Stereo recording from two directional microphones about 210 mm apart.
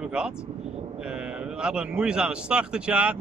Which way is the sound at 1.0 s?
5° right (ahead or behind).